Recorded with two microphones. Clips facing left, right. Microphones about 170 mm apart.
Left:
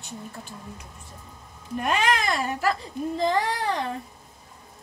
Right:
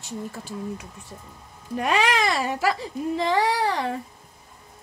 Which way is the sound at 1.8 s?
90° right.